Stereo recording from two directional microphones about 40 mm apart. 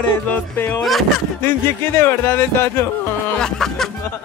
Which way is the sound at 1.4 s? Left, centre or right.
Left.